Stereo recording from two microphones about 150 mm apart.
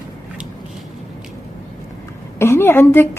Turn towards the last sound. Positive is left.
turn(degrees=15)  # may be behind; listen again after turning